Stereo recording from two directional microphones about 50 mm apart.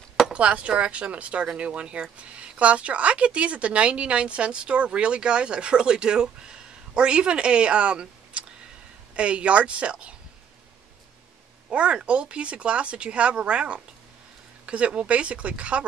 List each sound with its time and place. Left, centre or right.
0.3 s speech: right
11.7 s speech: right